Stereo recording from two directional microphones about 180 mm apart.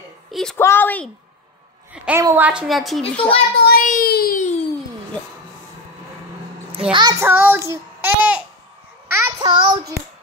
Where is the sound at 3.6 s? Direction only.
55° left (ahead or behind).